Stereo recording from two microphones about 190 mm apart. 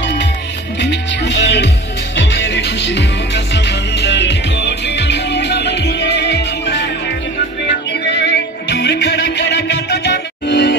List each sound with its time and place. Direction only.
0.7 s music: 65° left (ahead or behind)
8.0 s music: 65° left (ahead or behind)